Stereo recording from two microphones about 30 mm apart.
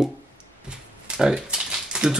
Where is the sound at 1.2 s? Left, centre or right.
Right.